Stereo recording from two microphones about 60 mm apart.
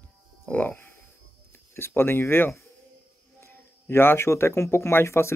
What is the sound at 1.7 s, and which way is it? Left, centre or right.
Speech, left.